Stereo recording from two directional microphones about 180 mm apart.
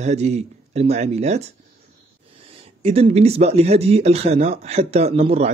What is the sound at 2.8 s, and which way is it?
Speech, 35° right (ahead or behind).